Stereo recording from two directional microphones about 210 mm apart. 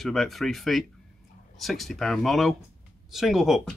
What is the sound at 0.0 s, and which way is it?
Speech, centre (ahead or behind).